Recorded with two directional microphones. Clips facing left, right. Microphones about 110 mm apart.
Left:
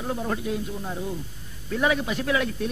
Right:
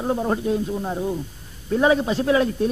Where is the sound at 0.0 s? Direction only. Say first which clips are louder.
Right 6 dB; 30° right (ahead or behind).